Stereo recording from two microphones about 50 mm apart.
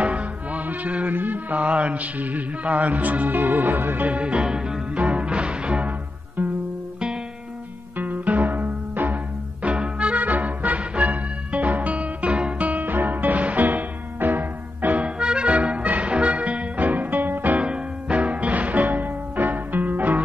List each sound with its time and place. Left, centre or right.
0.0 s music: right
8.0 s music: right
15.0 s music: centre; by 17.6 s right
17.6 s music: right